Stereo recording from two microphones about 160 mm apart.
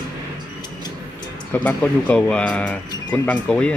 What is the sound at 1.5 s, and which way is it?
Speech, 10° left (ahead or behind).